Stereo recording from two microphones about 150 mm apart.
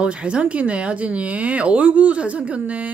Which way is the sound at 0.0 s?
5° right (ahead or behind).